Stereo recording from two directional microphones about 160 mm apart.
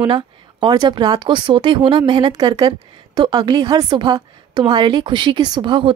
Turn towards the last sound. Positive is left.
turn(degrees=-30)  # may be behind; listen again after turning